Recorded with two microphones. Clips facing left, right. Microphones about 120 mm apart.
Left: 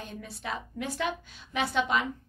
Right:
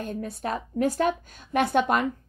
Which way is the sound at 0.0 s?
50° right (ahead or behind).